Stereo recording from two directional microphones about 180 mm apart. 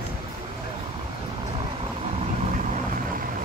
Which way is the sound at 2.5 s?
45° right (ahead or behind).